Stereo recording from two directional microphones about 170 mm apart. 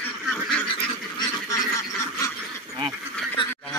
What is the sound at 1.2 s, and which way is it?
Goose, 20° left (ahead or behind).